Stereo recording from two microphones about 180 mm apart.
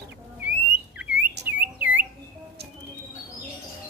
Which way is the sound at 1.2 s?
70° right (ahead or behind).